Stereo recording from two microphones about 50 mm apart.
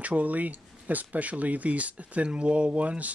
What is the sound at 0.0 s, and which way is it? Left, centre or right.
Speech, right.